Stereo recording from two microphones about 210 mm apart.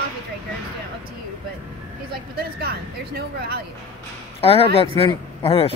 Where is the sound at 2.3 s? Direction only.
50° right (ahead or behind).